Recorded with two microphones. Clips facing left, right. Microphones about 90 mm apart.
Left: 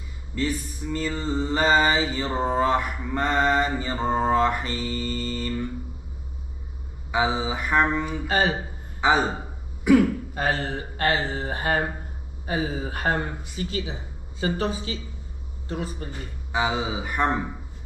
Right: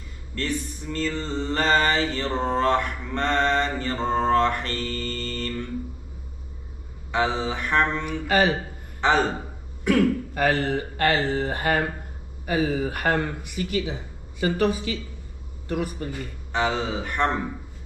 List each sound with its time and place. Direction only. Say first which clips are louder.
0.3 s mantra: left 1 dB; 10° left (ahead or behind)
7.1 s mantra: even; 5° left (ahead or behind)
8.5 s throat clearing: right 2 dB; 10° left (ahead or behind)
10.5 s mantra: right 4 dB; 20° left (ahead or behind)
12.4 s speech: right 4 dB; 20° left (ahead or behind)
16.5 s mantra: right 1 dB; 10° left (ahead or behind)